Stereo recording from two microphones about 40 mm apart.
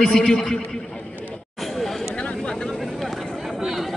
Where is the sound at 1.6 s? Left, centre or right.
Centre.